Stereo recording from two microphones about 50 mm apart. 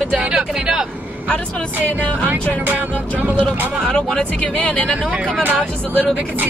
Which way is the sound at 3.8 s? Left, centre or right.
Centre.